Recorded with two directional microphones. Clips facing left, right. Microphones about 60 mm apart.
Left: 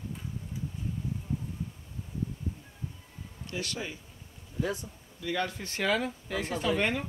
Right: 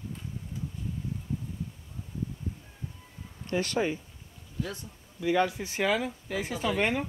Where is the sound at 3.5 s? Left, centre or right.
Right.